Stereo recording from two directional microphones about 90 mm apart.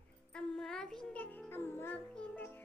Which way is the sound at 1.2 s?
20° left (ahead or behind).